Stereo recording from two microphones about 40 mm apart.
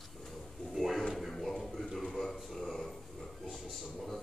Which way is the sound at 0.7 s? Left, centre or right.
Centre.